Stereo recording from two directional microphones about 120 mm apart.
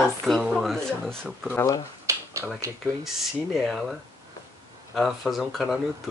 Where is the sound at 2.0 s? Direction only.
25° right (ahead or behind).